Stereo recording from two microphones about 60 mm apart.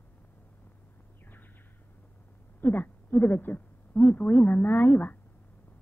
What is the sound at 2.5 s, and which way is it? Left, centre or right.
A woman's voice, left.